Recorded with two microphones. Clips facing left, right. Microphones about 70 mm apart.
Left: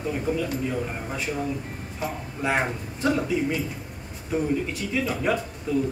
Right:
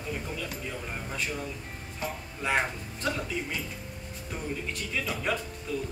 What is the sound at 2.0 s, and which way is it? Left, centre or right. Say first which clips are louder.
Speech: left 5 dB; centre.